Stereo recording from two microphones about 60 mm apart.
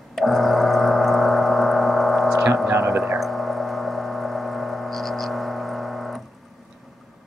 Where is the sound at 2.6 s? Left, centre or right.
Right.